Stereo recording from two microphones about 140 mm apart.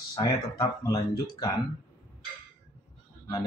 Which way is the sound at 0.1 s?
25° left (ahead or behind).